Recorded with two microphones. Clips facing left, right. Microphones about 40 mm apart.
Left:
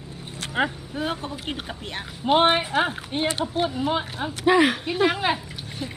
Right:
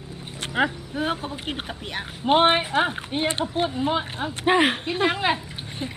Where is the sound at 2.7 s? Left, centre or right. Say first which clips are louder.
Right 1 dB; centre.